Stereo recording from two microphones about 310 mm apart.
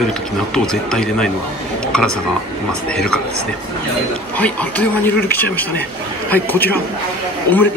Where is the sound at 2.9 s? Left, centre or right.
Centre.